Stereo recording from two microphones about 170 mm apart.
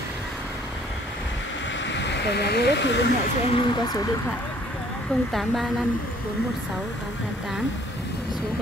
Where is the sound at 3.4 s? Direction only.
30° left (ahead or behind).